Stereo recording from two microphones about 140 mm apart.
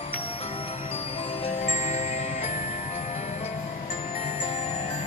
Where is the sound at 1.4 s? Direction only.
50° left (ahead or behind).